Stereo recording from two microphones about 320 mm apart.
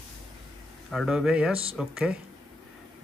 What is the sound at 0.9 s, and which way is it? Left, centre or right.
Speech, centre.